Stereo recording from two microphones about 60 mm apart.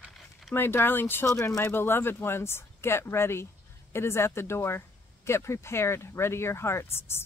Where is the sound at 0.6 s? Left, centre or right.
Left.